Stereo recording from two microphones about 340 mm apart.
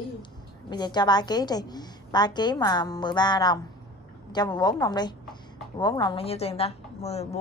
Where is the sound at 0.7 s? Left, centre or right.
Centre.